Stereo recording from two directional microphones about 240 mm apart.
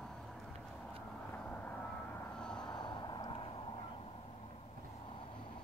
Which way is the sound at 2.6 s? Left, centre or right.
Centre.